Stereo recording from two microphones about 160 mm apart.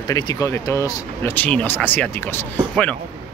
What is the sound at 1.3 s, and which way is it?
Speech, 10° left (ahead or behind).